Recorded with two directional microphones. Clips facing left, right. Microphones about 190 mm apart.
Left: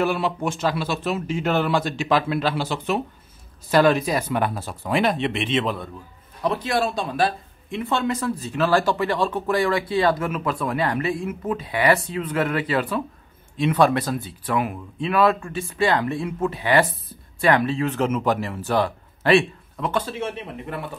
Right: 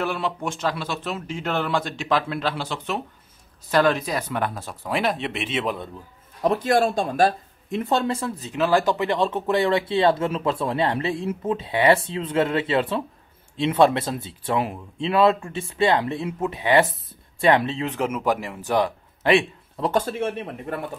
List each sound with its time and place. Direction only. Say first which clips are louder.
0.0 s a man's voice: left 4 dB; 5° left (ahead or behind)
6.4 s speech: right 3 dB; 45° right (ahead or behind); by 19.4 s 15° right (ahead or behind)
19.8 s speech: right 3 dB; 45° right (ahead or behind)